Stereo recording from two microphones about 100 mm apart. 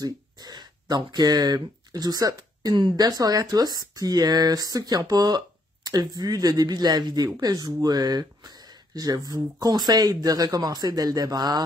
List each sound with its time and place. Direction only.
0.0 s speech: 45° right (ahead or behind)
2.7 s speech: 50° right (ahead or behind)